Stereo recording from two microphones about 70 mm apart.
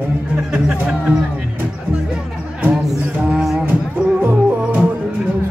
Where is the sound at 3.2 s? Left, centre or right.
Centre.